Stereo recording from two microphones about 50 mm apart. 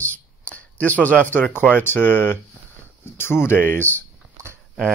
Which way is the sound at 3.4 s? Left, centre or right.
Left.